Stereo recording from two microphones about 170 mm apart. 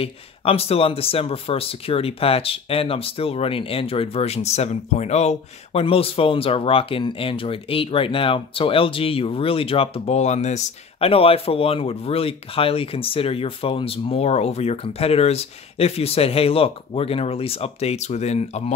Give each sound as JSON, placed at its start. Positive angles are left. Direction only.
{"t": 0.0, "sound": "speech", "side_deg": 35}